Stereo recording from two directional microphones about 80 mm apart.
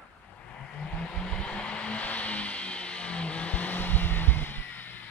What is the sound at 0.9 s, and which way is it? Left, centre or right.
Vehicle, centre.